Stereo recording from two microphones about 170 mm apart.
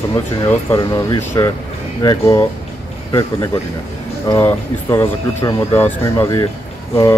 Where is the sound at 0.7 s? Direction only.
20° left (ahead or behind).